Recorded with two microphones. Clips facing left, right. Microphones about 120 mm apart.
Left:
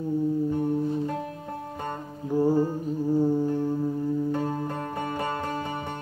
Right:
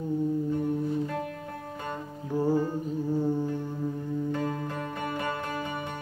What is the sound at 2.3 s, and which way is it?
Music, 10° left (ahead or behind).